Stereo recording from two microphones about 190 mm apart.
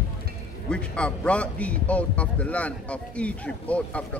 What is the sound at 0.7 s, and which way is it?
A man's voice, 5° left (ahead or behind).